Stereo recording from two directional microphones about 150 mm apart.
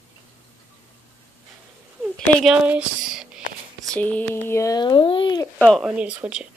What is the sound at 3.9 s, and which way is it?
Speech, 10° left (ahead or behind).